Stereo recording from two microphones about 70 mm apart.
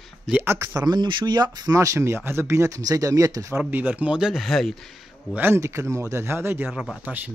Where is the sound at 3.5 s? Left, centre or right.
Right.